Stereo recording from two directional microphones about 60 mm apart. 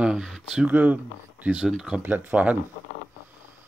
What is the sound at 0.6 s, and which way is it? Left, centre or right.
Speech, right.